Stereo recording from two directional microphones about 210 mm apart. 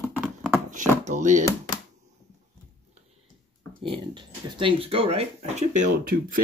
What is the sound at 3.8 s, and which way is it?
Speech, 25° right (ahead or behind).